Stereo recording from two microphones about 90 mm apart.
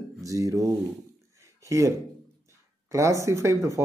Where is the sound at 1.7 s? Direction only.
35° right (ahead or behind).